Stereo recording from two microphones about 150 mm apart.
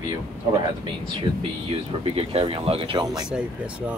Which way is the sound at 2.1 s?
40° right (ahead or behind).